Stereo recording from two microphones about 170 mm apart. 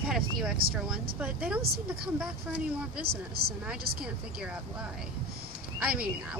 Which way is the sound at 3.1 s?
65° right (ahead or behind).